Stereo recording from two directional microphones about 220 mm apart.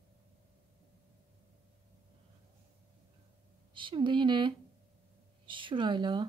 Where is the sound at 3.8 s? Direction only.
20° right (ahead or behind).